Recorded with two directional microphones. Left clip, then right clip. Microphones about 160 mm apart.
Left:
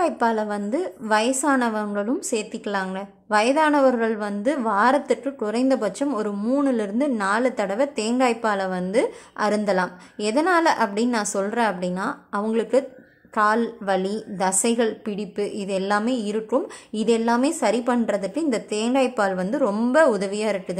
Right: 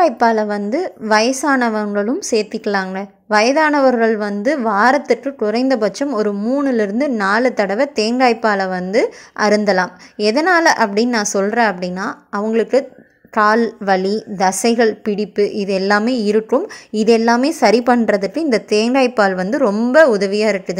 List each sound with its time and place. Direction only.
0.0 s a woman's voice: 30° right (ahead or behind)